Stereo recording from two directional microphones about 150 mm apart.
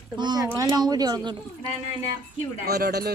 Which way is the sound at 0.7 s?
25° right (ahead or behind).